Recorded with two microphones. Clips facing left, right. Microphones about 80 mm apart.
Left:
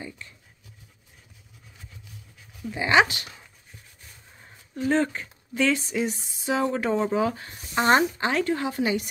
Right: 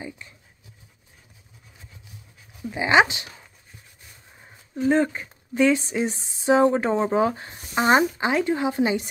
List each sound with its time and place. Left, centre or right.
2.6 s speech: centre
4.4 s a sound: centre
5.6 s speech: right